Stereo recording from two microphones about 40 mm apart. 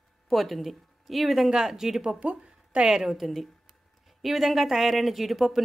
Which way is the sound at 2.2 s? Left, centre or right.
Right.